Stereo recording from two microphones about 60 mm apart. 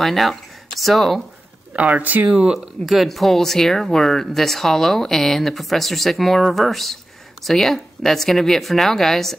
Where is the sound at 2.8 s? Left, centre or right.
Centre.